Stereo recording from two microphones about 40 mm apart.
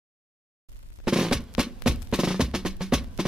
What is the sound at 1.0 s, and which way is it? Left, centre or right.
Percussion, centre.